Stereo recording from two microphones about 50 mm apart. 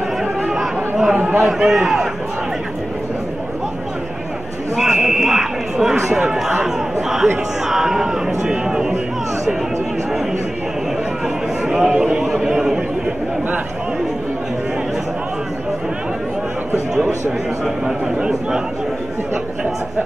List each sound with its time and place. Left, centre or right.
0.2 s chatter: centre
1.1 s a sound: right
1.4 s speech: centre
5.0 s speech: centre
11.6 s a man's voice: centre
16.7 s a sound: centre
17.6 s speech: centre